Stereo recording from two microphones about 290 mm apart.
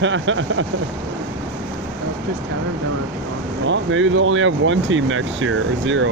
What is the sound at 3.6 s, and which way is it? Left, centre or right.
Speech, right.